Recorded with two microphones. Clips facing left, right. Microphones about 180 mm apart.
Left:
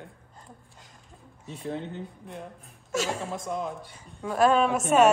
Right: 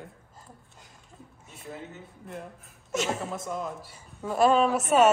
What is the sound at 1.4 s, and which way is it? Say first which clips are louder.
Speech: left 8 dB; 5° right (ahead or behind).